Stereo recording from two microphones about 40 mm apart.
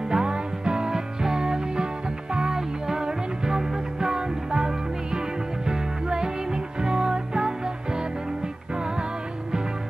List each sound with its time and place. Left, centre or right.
0.1 s music: right